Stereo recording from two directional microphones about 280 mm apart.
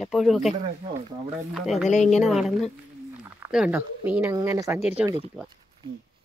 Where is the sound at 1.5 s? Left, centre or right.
Centre.